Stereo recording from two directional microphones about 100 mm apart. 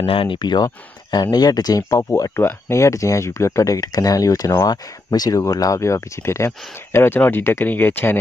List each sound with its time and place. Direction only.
0.0 s speech: 65° left (ahead or behind); by 8.2 s 20° left (ahead or behind)